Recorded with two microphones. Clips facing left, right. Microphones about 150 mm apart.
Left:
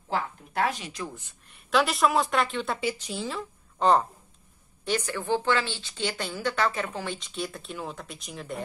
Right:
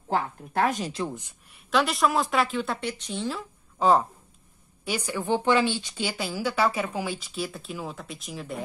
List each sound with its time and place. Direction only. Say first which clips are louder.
0.7 s speech: right 4 dB; 40° right (ahead or behind)
1.5 s a woman's voice: even; centre (ahead or behind)